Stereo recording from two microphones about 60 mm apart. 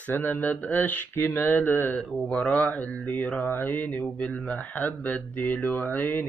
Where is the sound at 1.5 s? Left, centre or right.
Left.